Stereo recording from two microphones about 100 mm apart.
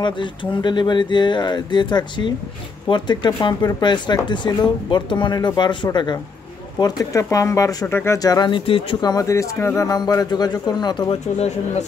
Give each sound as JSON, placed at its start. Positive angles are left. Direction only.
{"t": 0.0, "sound": "speech", "side_deg": 50}
{"t": 6.8, "sound": "speech", "side_deg": 35}
{"t": 8.2, "sound": "speech", "side_deg": 40}
{"t": 8.5, "sound": "speech", "side_deg": 60}
{"t": 9.0, "sound": "speech", "side_deg": 35}
{"t": 11.1, "sound": "speech", "side_deg": 90}